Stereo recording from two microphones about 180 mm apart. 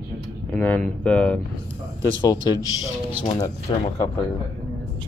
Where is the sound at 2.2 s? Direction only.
25° left (ahead or behind).